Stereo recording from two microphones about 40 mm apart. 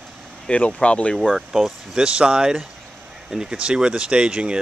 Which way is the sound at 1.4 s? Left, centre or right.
Centre.